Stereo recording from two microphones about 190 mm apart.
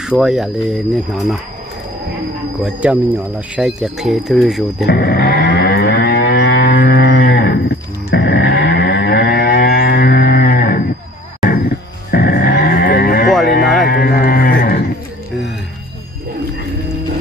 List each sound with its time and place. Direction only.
0.2 s speech: centre (ahead or behind)
2.6 s speech: 5° right (ahead or behind)
4.8 s livestock: 55° left (ahead or behind)
12.1 s cattle: 55° left (ahead or behind)
13.8 s livestock: 50° left (ahead or behind)